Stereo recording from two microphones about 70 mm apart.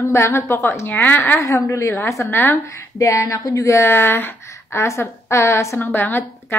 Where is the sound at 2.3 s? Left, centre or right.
Left.